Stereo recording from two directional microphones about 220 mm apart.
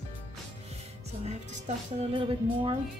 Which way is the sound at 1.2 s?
30° right (ahead or behind).